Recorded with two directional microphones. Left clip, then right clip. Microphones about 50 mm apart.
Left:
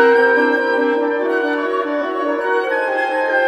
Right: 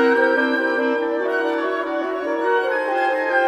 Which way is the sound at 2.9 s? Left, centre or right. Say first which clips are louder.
Left 2 dB; left.